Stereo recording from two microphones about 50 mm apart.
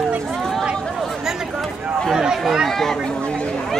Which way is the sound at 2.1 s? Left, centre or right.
Centre.